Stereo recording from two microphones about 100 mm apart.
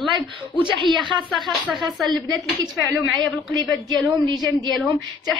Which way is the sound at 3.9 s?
40° right (ahead or behind).